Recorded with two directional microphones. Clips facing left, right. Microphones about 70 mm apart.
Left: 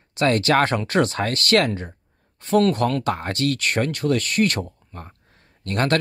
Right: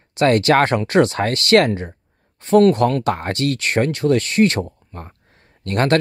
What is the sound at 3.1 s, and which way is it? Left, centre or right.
Speech, right.